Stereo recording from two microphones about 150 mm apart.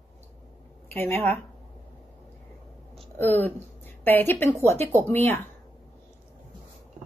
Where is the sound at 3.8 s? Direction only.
15° left (ahead or behind).